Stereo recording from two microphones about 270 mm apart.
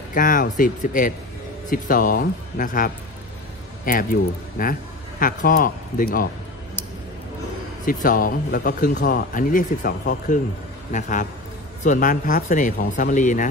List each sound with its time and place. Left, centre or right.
0.1 s speech: left
7.8 s speech: left